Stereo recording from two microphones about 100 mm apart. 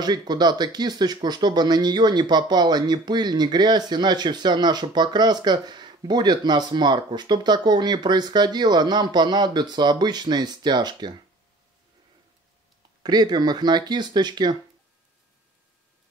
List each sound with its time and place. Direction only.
0.0 s speech: 45° right (ahead or behind)
13.0 s speech: 45° right (ahead or behind)